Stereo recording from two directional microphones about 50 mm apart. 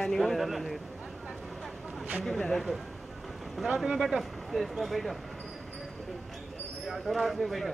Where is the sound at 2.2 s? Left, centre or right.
Centre.